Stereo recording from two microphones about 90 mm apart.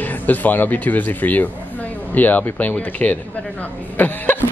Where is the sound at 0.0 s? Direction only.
20° left (ahead or behind).